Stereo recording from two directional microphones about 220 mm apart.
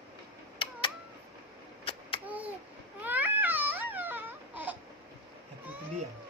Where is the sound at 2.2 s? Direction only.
5° right (ahead or behind).